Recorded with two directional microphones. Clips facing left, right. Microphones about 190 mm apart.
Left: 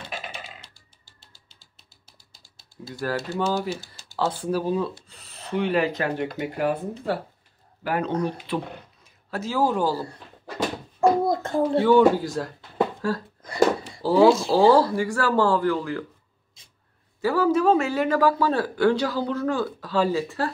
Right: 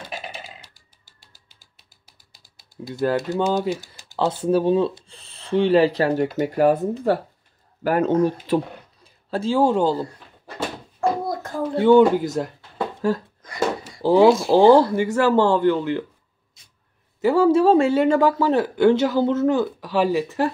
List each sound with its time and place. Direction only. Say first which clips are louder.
2.9 s speech: right 6 dB; 20° right (ahead or behind); by 8.5 s 40° right (ahead or behind)
9.0 s speech: right 7 dB; 30° right (ahead or behind)
11.0 s a sound: left 3 dB; 25° left (ahead or behind)
11.8 s speech: right 5 dB; 20° right (ahead or behind)
14.0 s speech: right 2 dB; 20° right (ahead or behind)
17.2 s speech: right 5 dB; 25° right (ahead or behind)